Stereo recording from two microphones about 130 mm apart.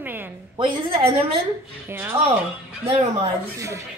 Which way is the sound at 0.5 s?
40° right (ahead or behind).